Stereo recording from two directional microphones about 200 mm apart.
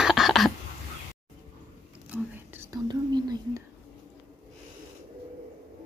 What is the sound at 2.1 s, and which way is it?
Whispering, 10° right (ahead or behind).